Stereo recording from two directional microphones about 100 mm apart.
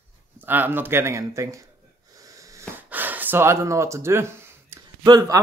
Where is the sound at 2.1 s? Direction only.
35° right (ahead or behind).